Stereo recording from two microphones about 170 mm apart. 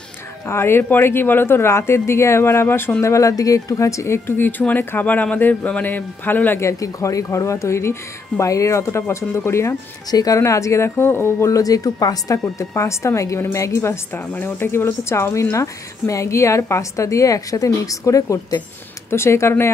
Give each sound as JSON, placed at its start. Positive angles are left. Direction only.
{"t": 0.5, "sound": "speech", "side_deg": 15}